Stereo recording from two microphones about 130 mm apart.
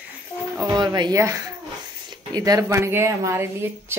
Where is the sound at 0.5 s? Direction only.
35° right (ahead or behind).